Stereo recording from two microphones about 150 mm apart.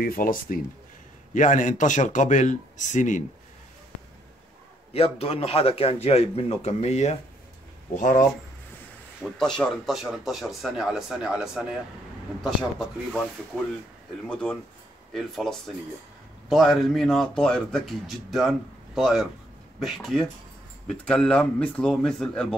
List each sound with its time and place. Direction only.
0.0 s speech: 70° left (ahead or behind)
1.3 s speech: 55° left (ahead or behind)
4.9 s a man's voice: 40° left (ahead or behind)
7.9 s speech: 60° left (ahead or behind)
9.2 s speech: 5° left (ahead or behind)